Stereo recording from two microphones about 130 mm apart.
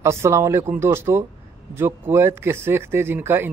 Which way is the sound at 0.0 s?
20° right (ahead or behind).